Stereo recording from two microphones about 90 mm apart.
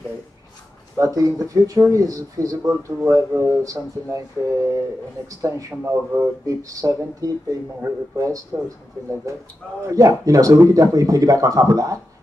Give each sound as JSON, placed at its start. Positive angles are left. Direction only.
{"t": 0.9, "sound": "speech", "side_deg": -35}
{"t": 9.8, "sound": "speech", "side_deg": -40}